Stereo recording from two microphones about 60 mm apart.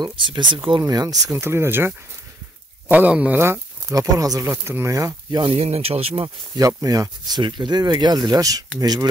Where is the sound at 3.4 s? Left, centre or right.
Right.